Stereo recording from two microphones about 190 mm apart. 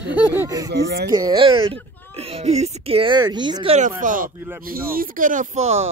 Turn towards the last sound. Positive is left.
turn(degrees=-35)  # may be behind; listen again after turning